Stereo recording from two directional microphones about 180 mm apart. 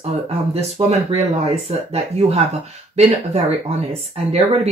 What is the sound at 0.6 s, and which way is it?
Speech, 35° right (ahead or behind).